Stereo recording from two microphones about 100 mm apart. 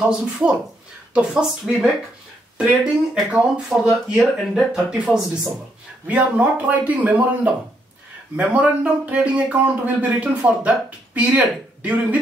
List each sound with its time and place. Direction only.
0.0 s a man's voice: 5° right (ahead or behind)